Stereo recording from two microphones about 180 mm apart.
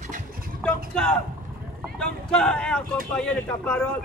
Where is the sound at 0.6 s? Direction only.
5° left (ahead or behind).